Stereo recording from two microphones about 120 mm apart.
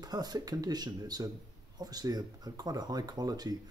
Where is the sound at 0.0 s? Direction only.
35° right (ahead or behind).